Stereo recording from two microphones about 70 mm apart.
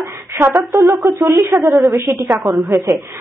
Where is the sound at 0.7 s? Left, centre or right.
Right.